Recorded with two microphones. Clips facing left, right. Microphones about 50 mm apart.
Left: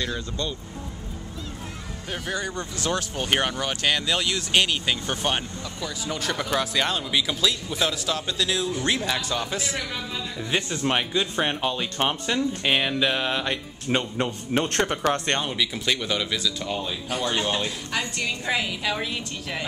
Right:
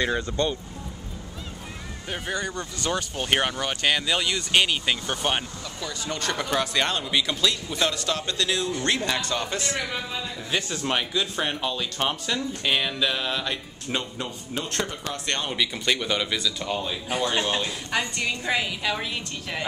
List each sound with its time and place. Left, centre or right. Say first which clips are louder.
0.0 s speech: right 5 dB; right
2.0 s speech: even; centre
2.3 s speech: left 1 dB; centre
9.8 s a man's voice: right 1 dB; centre
10.5 s speech: left 2 dB; centre
14.1 s speech: left 7 dB; left
15.4 s speech: even; centre